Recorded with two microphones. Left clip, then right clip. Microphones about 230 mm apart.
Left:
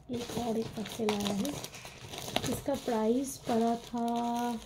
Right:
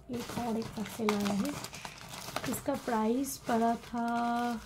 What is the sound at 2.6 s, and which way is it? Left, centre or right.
A woman's voice, right.